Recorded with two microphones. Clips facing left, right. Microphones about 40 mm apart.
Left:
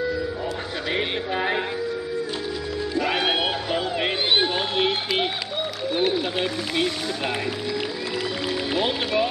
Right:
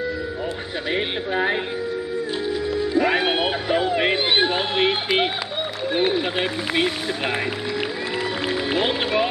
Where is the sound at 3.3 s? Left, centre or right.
Centre.